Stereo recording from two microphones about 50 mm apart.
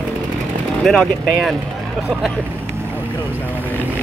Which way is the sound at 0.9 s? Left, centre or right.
Centre.